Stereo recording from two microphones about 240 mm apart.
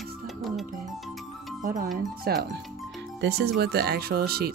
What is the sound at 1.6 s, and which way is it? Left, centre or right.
Speech, right.